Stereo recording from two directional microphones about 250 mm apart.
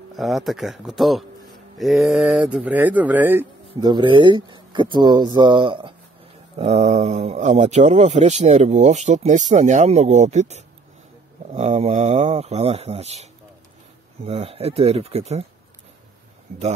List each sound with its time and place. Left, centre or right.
0.1 s speech: centre; by 15.4 s right